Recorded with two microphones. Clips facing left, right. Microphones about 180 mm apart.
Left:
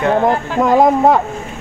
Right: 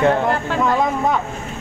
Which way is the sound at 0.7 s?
45° left (ahead or behind).